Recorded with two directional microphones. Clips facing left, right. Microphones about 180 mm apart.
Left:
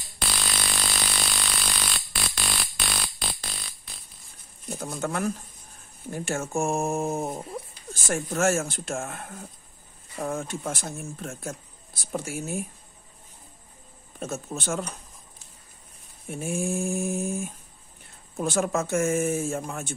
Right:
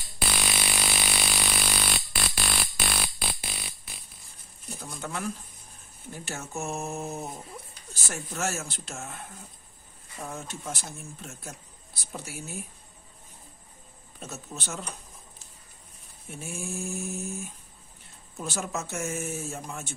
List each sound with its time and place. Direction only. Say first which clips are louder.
0.2 s music: right 1 dB; 10° right (ahead or behind)
4.6 s speech: left 7 dB; 50° left (ahead or behind)
14.2 s speech: left 8 dB; 50° left (ahead or behind)
16.3 s speech: left 8 dB; 50° left (ahead or behind)